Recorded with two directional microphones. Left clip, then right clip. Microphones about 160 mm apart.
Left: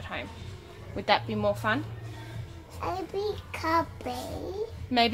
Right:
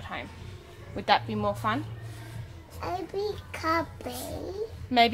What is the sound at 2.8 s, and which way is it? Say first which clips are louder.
Child singing: even; 10° left (ahead or behind).